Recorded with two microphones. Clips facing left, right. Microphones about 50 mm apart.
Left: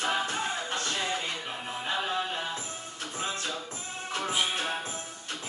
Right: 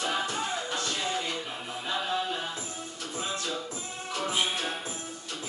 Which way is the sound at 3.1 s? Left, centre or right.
Left.